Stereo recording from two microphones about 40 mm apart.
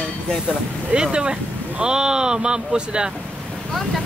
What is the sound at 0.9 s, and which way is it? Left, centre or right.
Speech, right.